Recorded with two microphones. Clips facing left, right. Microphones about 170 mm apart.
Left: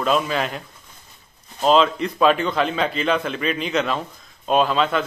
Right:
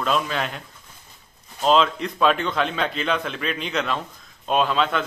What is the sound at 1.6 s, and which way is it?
A man's voice, centre (ahead or behind).